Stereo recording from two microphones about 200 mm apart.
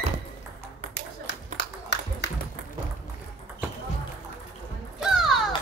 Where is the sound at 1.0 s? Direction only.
60° left (ahead or behind).